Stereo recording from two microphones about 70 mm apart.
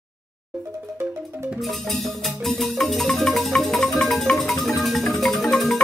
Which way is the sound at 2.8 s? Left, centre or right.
Centre.